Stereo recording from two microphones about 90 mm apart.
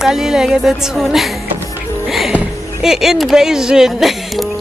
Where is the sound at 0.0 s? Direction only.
5° right (ahead or behind).